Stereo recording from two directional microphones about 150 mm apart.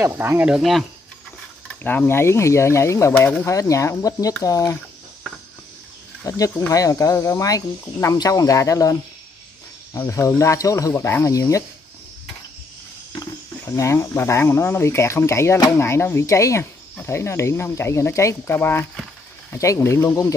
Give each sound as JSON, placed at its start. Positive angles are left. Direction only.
{"t": 0.0, "sound": "speech", "side_deg": -15}
{"t": 1.7, "sound": "speech", "side_deg": 10}
{"t": 6.2, "sound": "speech", "side_deg": 20}
{"t": 9.9, "sound": "speech", "side_deg": 20}
{"t": 13.1, "sound": "speech", "side_deg": 20}